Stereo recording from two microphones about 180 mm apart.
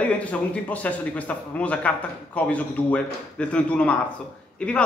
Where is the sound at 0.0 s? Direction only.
10° left (ahead or behind).